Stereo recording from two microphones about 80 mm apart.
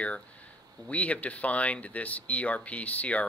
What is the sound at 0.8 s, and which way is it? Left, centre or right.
Speech, centre.